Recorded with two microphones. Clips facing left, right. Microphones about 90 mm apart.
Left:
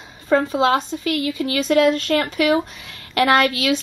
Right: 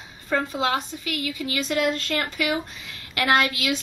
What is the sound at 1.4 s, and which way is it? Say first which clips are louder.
Speech: left 8 dB; 50° left (ahead or behind).